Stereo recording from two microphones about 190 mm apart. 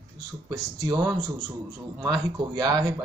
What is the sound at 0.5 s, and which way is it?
Speech, 15° right (ahead or behind).